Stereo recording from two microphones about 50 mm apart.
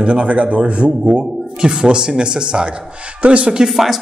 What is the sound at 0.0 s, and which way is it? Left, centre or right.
A man's voice, right.